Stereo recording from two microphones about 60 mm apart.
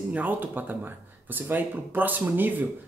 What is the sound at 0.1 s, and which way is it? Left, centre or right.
Speech, right.